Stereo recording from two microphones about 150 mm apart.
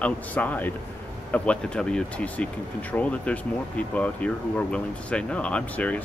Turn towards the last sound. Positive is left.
turn(degrees=10)  # may be behind; listen again after turning